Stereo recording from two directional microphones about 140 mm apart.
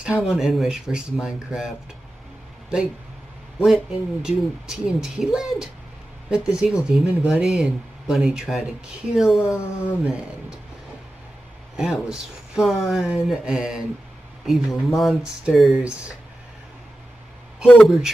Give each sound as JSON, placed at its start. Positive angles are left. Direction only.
{"t": 0.2, "sound": "speech", "side_deg": -5}
{"t": 3.6, "sound": "speech", "side_deg": -5}
{"t": 9.4, "sound": "speech", "side_deg": 15}
{"t": 11.7, "sound": "speech", "side_deg": -5}
{"t": 17.6, "sound": "speech", "side_deg": 0}